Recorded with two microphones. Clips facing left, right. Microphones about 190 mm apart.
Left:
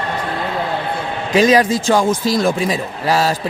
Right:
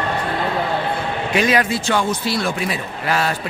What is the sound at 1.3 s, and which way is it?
Speech, 35° left (ahead or behind).